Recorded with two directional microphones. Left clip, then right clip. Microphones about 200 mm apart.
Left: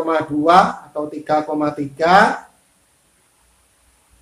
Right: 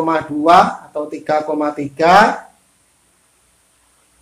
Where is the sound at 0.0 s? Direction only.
35° right (ahead or behind).